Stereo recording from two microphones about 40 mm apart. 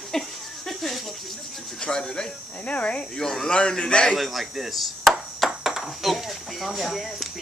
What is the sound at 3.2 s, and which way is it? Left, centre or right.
Speech, centre.